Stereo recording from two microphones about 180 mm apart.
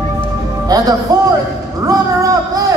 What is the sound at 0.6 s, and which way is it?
Music, 20° right (ahead or behind).